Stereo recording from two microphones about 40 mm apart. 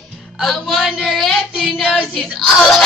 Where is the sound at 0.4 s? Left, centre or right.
Centre.